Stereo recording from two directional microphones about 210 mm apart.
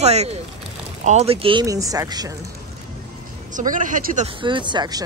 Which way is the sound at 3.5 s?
40° right (ahead or behind).